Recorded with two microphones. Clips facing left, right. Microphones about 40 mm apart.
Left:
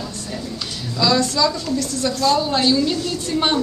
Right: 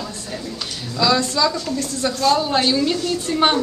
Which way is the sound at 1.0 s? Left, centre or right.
Centre.